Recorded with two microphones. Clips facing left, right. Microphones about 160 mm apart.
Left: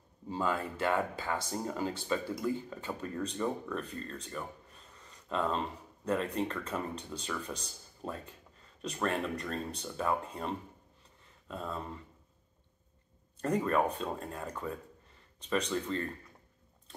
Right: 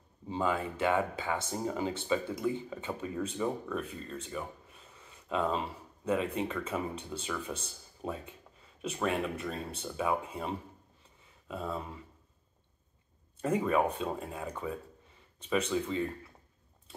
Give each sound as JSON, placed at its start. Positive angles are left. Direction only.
{"t": 0.4, "sound": "speech", "side_deg": -5}
{"t": 13.4, "sound": "speech", "side_deg": -5}